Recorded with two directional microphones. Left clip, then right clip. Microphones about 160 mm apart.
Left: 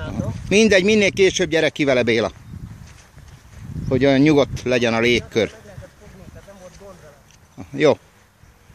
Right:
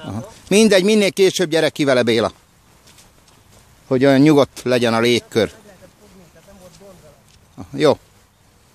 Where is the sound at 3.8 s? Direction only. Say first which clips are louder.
Right 3 dB; 40° right (ahead or behind).